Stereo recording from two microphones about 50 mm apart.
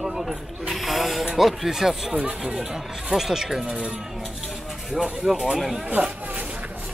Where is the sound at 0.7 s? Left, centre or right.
Centre.